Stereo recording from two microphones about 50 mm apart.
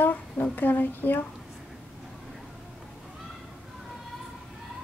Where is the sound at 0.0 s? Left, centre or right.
Left.